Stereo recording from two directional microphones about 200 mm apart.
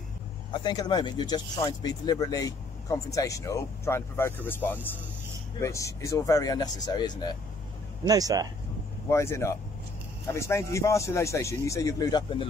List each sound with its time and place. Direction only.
0.5 s speech: 20° left (ahead or behind)
8.1 s speech: 20° right (ahead or behind)
9.1 s speech: 15° left (ahead or behind)